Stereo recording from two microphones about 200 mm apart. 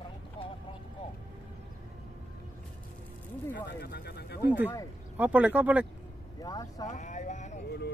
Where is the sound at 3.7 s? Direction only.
55° left (ahead or behind).